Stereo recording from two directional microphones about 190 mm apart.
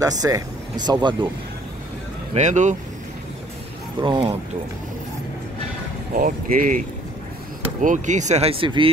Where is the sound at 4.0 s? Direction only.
25° right (ahead or behind).